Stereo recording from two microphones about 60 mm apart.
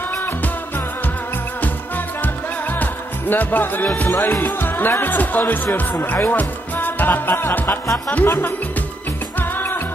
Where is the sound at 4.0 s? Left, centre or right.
Left.